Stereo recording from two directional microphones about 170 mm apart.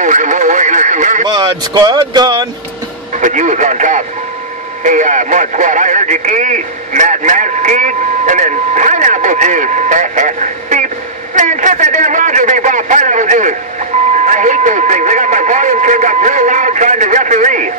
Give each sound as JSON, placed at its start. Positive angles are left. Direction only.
{"t": 0.0, "sound": "speech", "side_deg": -45}
{"t": 1.3, "sound": "speech", "side_deg": -25}
{"t": 3.2, "sound": "speech", "side_deg": -45}